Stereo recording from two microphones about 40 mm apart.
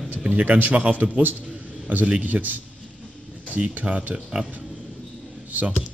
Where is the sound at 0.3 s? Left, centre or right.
Right.